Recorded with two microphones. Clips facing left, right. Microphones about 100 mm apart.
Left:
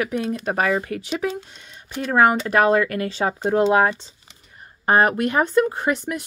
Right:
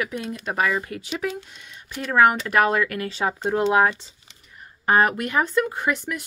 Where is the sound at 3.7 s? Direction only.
30° left (ahead or behind).